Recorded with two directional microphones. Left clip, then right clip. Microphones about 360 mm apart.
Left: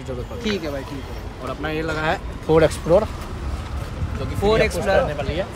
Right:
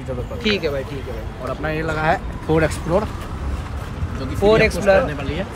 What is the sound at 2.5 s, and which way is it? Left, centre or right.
Speech, left.